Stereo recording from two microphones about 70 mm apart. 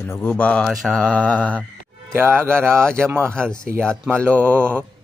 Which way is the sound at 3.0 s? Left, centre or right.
Right.